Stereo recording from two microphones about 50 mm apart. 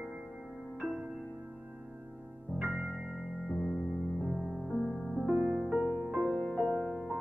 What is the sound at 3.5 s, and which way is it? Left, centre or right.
Music, centre.